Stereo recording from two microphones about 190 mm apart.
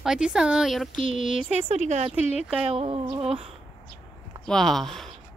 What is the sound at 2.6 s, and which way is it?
Speech, 30° right (ahead or behind).